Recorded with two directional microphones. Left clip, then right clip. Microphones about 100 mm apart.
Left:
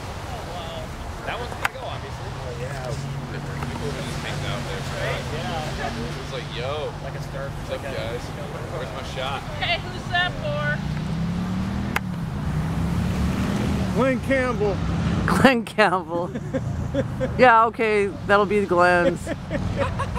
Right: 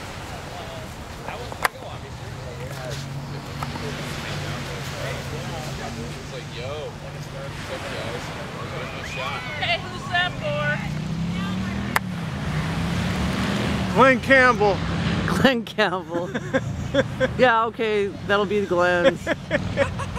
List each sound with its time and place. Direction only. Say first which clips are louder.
9.6 s speech: right 1 dB; centre (ahead or behind)
13.2 s vehicle: right 1 dB; 10° right (ahead or behind)
15.2 s speech: left 3 dB; 5° left (ahead or behind)
16.3 s speech: right 4 dB; 15° right (ahead or behind)
17.4 s speech: left 4 dB; 5° left (ahead or behind)
19.0 s speech: right 4 dB; 20° right (ahead or behind)